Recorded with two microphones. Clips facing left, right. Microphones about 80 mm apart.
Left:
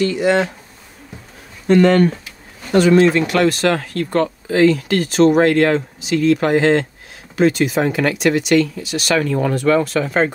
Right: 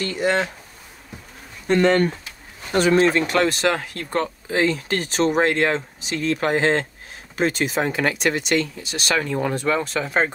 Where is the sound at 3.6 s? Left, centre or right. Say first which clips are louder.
Left 4 dB; centre.